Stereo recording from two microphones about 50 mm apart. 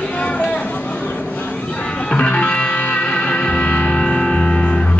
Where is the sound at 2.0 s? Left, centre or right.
Left.